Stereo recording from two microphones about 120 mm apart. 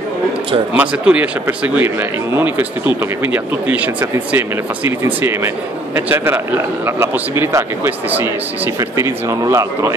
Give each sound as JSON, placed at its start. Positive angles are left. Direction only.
{"t": 0.7, "sound": "a man's voice", "side_deg": -10}